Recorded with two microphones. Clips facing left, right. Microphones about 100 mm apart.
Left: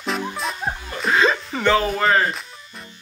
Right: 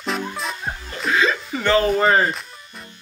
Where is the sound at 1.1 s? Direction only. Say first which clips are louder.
Left 1 dB; 25° left (ahead or behind).